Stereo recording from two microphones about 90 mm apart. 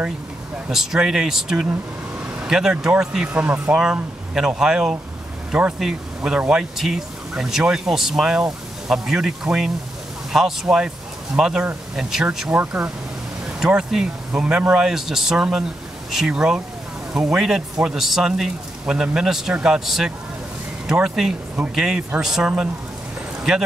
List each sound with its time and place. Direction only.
0.7 s speech: 5° right (ahead or behind)